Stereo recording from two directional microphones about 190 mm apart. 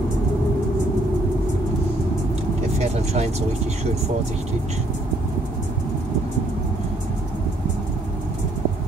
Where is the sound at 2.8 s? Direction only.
35° right (ahead or behind).